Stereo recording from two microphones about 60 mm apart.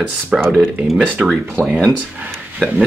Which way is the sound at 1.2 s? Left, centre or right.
Centre.